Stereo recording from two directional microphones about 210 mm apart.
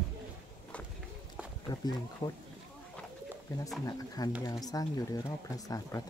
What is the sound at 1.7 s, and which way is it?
Speech, 20° left (ahead or behind).